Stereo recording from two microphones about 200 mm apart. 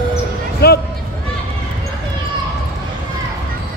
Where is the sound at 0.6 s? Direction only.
50° left (ahead or behind).